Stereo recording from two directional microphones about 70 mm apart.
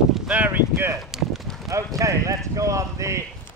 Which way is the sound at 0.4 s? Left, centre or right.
Right.